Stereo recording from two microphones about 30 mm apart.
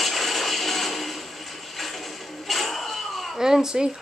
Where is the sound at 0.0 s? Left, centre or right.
Centre.